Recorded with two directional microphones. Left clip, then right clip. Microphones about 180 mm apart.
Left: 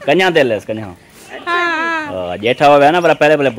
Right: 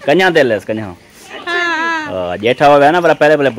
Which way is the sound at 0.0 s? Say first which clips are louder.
Right 1 dB; 10° right (ahead or behind).